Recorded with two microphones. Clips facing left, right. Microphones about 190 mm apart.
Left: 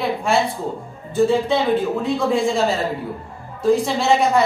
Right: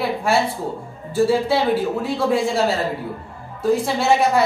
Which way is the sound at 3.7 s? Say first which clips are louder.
Left 1 dB; 5° right (ahead or behind).